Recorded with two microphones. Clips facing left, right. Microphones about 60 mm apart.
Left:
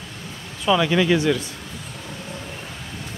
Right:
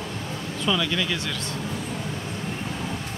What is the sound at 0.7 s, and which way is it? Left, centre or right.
Speech, left.